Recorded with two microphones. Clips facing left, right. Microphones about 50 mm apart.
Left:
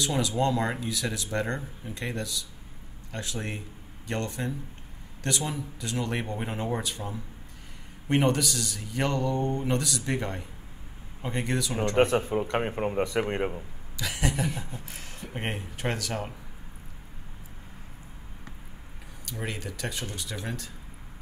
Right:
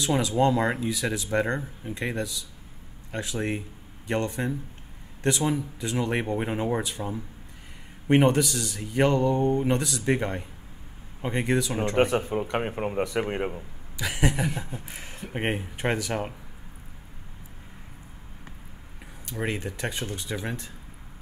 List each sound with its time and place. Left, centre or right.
0.0 s speech: centre
12.0 s speech: centre
13.9 s speech: centre
19.2 s speech: right